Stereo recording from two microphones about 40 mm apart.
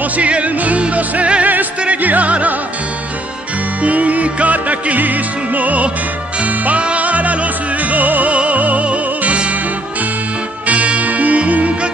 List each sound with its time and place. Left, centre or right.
0.0 s music: right
3.8 s music: right
10.7 s music: right